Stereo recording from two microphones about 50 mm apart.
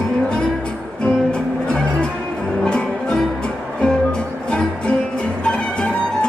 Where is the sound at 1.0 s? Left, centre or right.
Left.